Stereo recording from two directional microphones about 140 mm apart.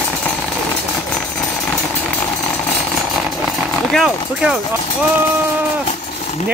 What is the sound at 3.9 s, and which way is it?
Speech, centre (ahead or behind).